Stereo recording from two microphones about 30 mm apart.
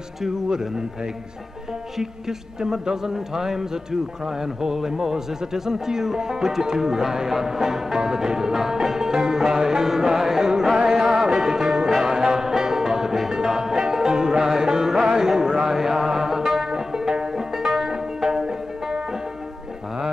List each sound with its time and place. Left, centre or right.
0.5 s speech: right
2.0 s a man's voice: centre
10.9 s music: centre